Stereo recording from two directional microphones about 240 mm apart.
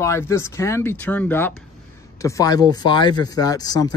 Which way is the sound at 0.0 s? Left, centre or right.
Centre.